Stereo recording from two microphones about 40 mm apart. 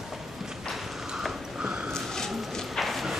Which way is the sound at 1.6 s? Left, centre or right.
Right.